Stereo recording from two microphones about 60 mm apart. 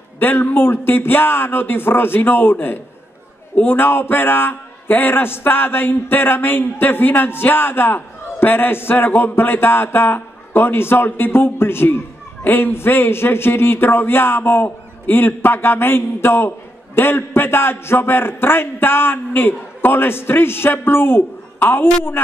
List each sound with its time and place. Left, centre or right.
0.2 s a man's voice: left